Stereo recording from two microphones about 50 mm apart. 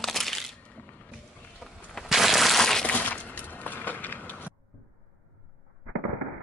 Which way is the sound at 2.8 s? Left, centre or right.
Left.